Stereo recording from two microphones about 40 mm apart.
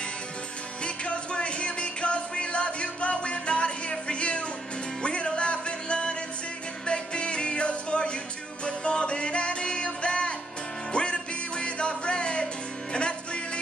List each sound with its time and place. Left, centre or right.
0.8 s music: left